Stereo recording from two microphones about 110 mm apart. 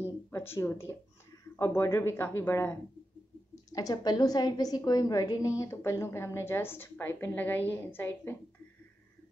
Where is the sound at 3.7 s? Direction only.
35° left (ahead or behind); by 8.4 s 20° left (ahead or behind).